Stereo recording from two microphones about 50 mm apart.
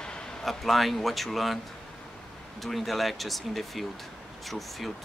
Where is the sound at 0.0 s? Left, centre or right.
Centre.